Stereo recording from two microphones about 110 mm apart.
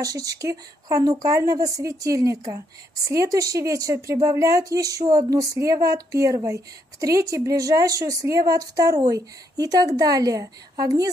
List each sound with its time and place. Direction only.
0.0 s speech: 35° right (ahead or behind)